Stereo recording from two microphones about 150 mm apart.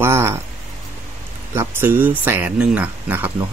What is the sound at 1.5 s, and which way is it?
Speech, 15° right (ahead or behind).